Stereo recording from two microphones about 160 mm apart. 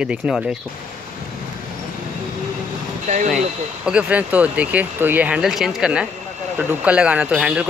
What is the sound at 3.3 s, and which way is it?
Speech, centre (ahead or behind).